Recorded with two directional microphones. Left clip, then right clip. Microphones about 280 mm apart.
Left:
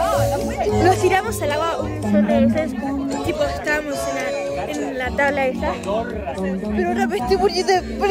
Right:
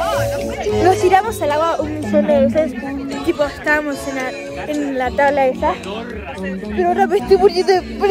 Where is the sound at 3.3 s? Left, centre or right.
Centre.